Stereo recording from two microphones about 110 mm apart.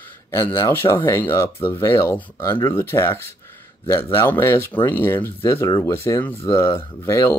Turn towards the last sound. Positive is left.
turn(degrees=35)  # may be behind; listen again after turning